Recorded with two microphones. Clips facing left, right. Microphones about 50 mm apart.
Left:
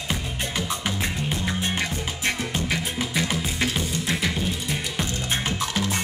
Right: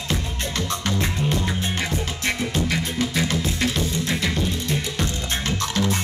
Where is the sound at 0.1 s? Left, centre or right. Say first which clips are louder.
Right 1 dB; centre.